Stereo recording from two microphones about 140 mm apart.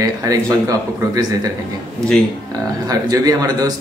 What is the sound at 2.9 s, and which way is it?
Speech, 25° right (ahead or behind).